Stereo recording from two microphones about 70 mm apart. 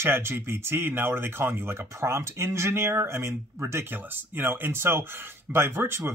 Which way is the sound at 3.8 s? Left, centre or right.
Right.